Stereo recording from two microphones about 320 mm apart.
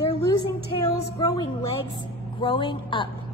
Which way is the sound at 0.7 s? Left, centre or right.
Centre.